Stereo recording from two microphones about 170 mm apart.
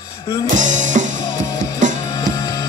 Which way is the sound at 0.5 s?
45° right (ahead or behind).